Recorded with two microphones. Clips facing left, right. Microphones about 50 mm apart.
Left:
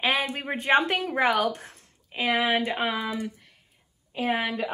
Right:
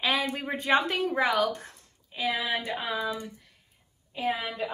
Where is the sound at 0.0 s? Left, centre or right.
Left.